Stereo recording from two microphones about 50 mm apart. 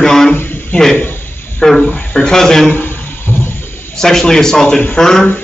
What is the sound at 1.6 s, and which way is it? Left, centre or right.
A man's voice, centre.